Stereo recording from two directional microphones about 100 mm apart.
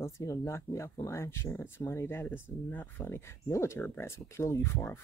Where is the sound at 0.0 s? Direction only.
30° left (ahead or behind).